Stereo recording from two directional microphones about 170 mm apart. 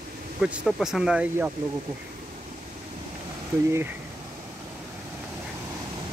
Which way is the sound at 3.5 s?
15° right (ahead or behind).